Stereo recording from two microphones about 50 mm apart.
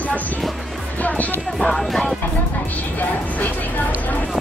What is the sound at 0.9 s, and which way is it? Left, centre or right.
Music, left.